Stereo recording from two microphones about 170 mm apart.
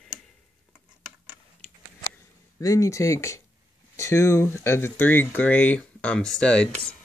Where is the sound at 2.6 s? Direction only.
20° left (ahead or behind).